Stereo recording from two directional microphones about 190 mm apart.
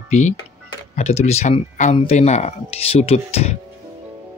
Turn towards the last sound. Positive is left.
turn(degrees=35)  # may be behind; listen again after turning